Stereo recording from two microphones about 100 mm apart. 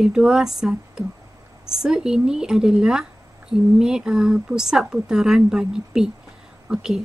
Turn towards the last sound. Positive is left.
turn(degrees=-5)  # may be behind; listen again after turning